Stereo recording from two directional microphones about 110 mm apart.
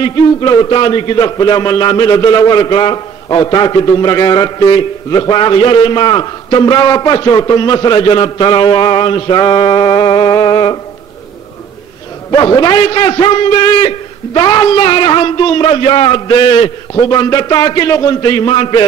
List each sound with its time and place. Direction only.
0.0 s a man's voice: 40° left (ahead or behind)
9.4 s a man's voice: 40° left (ahead or behind)
12.3 s a man's voice: 40° left (ahead or behind)